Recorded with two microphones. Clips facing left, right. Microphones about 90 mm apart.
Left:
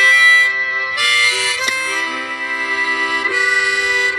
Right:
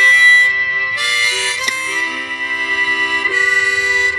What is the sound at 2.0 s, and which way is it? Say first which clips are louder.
Music: even; 25° left (ahead or behind).